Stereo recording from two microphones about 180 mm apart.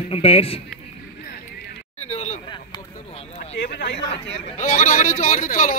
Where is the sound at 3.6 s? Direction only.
70° left (ahead or behind).